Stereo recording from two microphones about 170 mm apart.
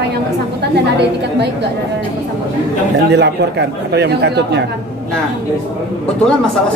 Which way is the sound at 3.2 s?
75° right (ahead or behind).